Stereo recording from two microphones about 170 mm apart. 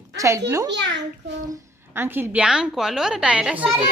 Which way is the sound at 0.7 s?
90° right.